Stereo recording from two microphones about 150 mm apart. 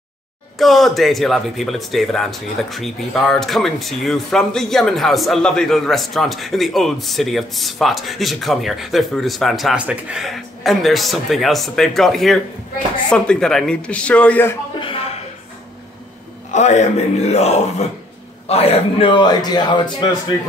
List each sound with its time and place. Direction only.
0.6 s a man's voice: centre (ahead or behind)
14.8 s a sound: 40° left (ahead or behind)
16.5 s a man's voice: 50° left (ahead or behind); by 20.3 s 30° left (ahead or behind)